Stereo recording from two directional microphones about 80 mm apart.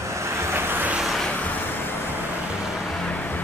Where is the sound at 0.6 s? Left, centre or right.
Right.